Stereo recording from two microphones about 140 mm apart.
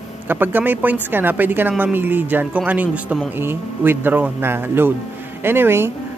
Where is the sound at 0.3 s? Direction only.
15° right (ahead or behind).